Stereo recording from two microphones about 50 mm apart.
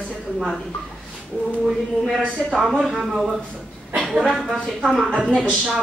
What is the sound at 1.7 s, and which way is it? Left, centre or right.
Speech, centre.